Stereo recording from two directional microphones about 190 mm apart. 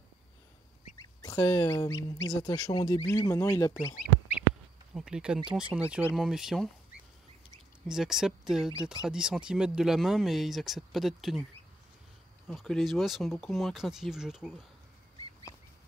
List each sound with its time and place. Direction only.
1.2 s speech: 15° left (ahead or behind)
4.9 s speech: 5° right (ahead or behind)
7.8 s speech: centre (ahead or behind)
12.4 s speech: centre (ahead or behind)